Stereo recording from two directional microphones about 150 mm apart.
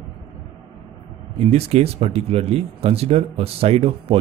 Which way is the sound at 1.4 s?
45° right (ahead or behind).